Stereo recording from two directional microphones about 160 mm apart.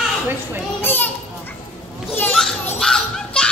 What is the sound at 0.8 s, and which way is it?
Children playing, 15° left (ahead or behind).